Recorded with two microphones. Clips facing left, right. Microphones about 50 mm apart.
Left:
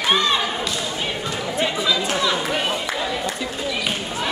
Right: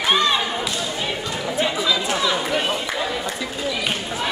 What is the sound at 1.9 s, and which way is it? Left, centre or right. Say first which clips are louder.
Chatter: even; centre.